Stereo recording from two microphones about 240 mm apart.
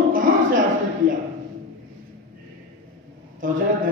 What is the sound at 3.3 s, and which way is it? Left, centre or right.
Speech, right.